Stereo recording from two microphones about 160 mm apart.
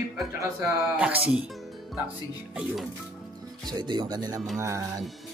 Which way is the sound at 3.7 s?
30° right (ahead or behind).